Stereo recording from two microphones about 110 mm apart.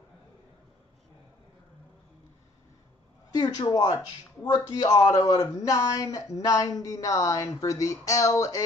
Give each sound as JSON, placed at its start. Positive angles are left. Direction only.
{"t": 3.3, "sound": "speech", "side_deg": 35}